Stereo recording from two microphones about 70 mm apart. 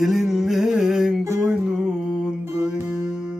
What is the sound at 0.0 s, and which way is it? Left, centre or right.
Music, centre.